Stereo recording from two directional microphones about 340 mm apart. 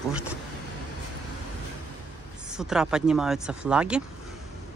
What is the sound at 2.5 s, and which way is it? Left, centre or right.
Speech, centre.